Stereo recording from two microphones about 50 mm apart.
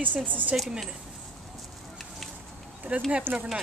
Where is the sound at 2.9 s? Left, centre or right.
Right.